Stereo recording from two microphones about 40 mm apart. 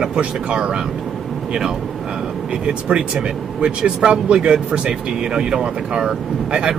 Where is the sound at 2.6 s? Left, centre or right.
Right.